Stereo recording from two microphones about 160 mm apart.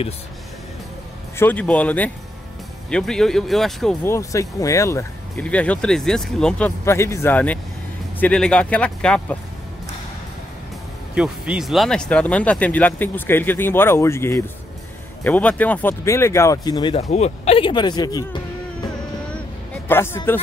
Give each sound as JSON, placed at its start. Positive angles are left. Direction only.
{"t": 1.3, "sound": "speech", "side_deg": 10}
{"t": 4.0, "sound": "speech", "side_deg": 20}
{"t": 5.3, "sound": "speech", "side_deg": 10}
{"t": 6.8, "sound": "speech", "side_deg": 15}
{"t": 11.1, "sound": "speech", "side_deg": -5}
{"t": 16.9, "sound": "speech", "side_deg": 40}
{"t": 19.7, "sound": "a sound", "side_deg": 15}